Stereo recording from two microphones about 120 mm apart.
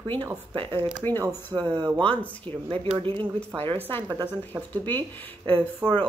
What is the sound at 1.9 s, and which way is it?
Speech, 10° left (ahead or behind).